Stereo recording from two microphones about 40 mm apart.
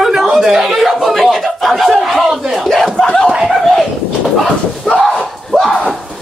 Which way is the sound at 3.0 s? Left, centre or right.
Centre.